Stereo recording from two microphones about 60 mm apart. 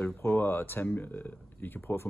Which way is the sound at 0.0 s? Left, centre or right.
Left.